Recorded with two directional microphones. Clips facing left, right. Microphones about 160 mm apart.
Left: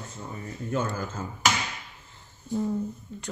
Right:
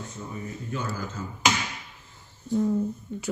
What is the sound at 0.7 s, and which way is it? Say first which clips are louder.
Speech: left 4 dB; 50° left (ahead or behind).